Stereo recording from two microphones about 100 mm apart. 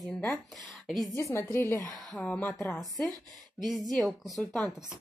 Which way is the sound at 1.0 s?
30° left (ahead or behind).